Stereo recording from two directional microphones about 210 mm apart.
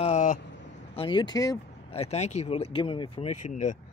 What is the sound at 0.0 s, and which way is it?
Vehicle, 35° left (ahead or behind).